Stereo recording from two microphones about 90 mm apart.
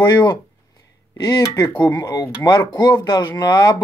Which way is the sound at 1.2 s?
40° left (ahead or behind).